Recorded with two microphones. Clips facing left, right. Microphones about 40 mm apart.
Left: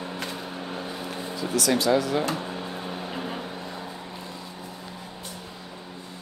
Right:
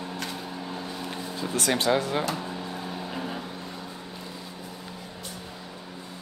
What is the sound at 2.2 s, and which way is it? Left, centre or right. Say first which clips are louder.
Drawer open or close: left 2 dB; left.